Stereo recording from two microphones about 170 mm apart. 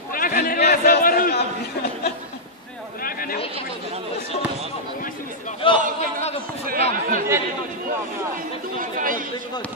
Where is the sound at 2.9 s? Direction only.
60° left (ahead or behind).